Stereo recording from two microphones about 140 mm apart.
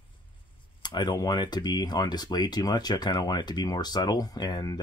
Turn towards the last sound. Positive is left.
turn(degrees=30)  # may be behind; listen again after turning